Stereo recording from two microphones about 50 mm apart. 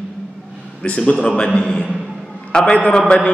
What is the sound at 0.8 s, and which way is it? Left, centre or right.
Mantra, left.